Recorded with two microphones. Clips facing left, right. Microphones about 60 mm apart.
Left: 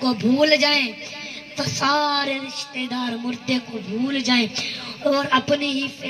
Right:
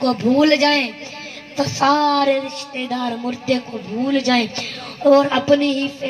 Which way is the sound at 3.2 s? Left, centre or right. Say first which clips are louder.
Right 4 dB; right.